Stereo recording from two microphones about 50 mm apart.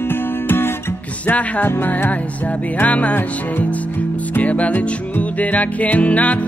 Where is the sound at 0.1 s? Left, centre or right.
Left.